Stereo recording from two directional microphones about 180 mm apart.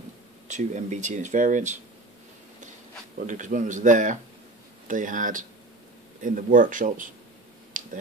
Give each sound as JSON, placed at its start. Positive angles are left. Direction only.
{"t": 0.5, "sound": "speech", "side_deg": -45}
{"t": 3.3, "sound": "speech", "side_deg": -45}